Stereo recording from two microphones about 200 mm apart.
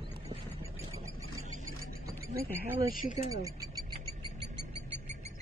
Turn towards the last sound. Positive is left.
turn(degrees=-15)  # may be behind; listen again after turning